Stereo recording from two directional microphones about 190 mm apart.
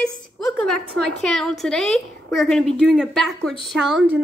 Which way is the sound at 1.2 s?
5° left (ahead or behind).